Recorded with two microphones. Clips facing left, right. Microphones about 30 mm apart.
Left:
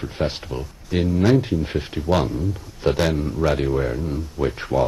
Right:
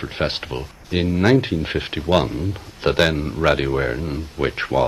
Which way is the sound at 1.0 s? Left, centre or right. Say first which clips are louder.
Right 2 dB; right.